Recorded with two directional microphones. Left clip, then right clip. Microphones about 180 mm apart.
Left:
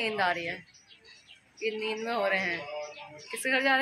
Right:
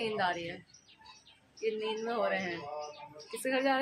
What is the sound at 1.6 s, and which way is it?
Speech, 20° left (ahead or behind).